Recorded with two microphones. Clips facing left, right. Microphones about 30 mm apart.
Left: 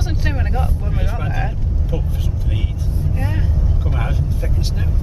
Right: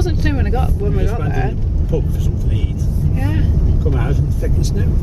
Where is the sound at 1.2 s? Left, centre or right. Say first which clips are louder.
Right 3 dB; centre.